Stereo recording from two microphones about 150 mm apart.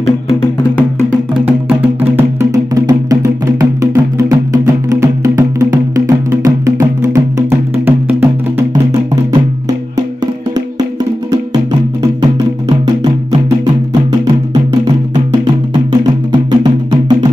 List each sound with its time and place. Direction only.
1.4 s music: 10° right (ahead or behind); by 12.3 s 25° right (ahead or behind)
12.6 s music: 40° right (ahead or behind)
14.2 s music: 30° right (ahead or behind)